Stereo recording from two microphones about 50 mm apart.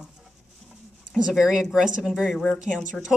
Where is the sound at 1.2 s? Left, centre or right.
Centre.